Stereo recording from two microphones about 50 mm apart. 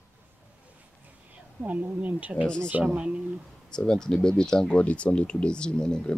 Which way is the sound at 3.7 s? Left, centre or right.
Centre.